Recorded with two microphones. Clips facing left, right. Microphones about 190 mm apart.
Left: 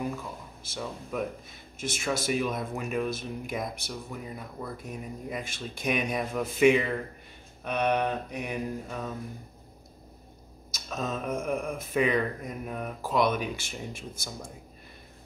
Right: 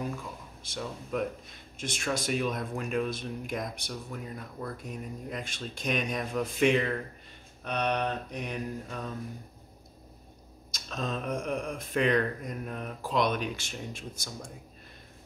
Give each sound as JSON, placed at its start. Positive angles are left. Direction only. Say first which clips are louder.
{"t": 0.7, "sound": "speech", "louder": "even", "side_deg": 5}
{"t": 10.7, "sound": "speech", "louder": "left 1 dB", "side_deg": 5}